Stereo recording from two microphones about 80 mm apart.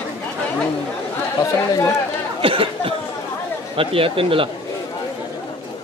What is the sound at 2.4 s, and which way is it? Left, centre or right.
Speech, right.